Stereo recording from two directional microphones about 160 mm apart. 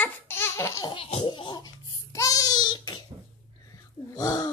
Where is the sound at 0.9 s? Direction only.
35° left (ahead or behind).